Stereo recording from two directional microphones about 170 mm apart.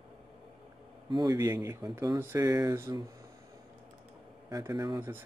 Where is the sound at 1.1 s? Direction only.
25° right (ahead or behind).